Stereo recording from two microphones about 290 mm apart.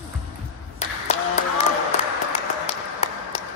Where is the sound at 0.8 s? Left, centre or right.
Left.